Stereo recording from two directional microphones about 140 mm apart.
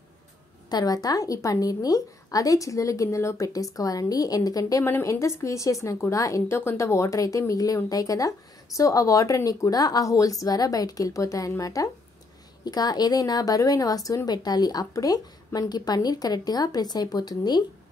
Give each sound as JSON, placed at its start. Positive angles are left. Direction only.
{"t": 0.7, "sound": "a woman's voice", "side_deg": 30}